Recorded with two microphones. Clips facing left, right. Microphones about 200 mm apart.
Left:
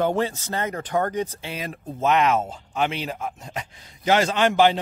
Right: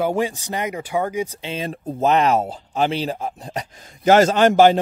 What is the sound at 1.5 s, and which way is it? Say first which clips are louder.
Speech: right 5 dB; 30° right (ahead or behind).